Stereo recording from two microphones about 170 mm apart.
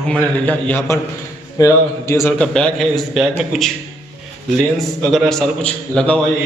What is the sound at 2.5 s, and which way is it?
A man's voice, 5° left (ahead or behind).